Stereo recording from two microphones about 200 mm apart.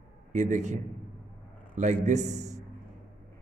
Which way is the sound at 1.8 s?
35° right (ahead or behind).